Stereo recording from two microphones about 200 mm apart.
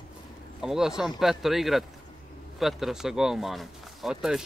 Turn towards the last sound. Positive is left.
turn(degrees=0)  # may be behind; listen again after turning